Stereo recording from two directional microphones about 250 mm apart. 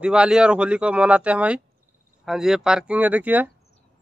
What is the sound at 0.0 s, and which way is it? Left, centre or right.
Speech, centre.